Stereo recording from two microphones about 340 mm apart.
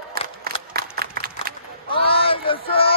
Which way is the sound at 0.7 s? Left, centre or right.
Right.